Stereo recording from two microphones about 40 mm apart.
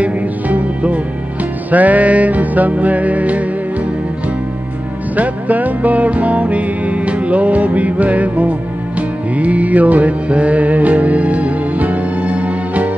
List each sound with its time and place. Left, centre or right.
0.0 s music: right
5.1 s music: right